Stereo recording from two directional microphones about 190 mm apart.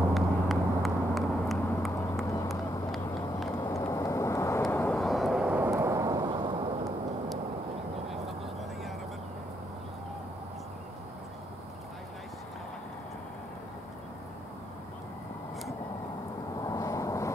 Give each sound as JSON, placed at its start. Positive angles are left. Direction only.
{"t": 0.1, "sound": "vehicle", "side_deg": 0}
{"t": 3.5, "sound": "vehicle", "side_deg": 20}
{"t": 16.6, "sound": "vehicle", "side_deg": 20}